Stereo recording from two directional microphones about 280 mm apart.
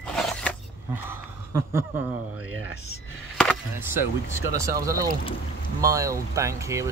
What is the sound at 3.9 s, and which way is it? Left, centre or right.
Speech, centre.